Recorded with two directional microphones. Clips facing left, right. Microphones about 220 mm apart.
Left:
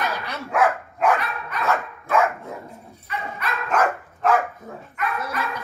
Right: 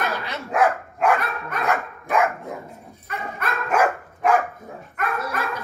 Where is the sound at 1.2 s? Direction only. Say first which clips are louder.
Right 2 dB; 45° right (ahead or behind).